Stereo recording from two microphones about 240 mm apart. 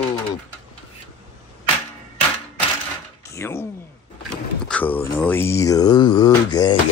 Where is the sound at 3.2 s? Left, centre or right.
Centre.